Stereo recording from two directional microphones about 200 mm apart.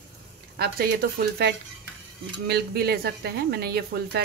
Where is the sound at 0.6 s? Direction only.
50° right (ahead or behind).